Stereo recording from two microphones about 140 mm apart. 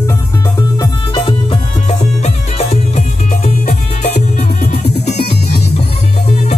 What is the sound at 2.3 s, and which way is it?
Music, 50° left (ahead or behind).